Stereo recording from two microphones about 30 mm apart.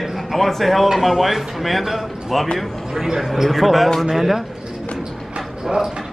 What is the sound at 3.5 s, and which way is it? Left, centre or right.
Speech, centre.